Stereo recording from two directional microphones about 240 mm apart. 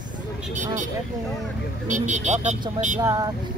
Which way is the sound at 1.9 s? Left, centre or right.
Right.